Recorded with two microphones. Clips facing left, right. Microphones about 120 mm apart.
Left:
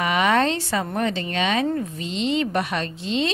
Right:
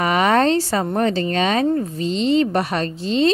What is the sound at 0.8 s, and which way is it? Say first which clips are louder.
A woman's voice: right 5 dB; 35° right (ahead or behind).